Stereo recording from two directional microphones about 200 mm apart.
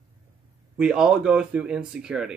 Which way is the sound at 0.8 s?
5° right (ahead or behind).